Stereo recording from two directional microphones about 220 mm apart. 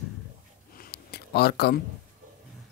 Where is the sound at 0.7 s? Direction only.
45° left (ahead or behind).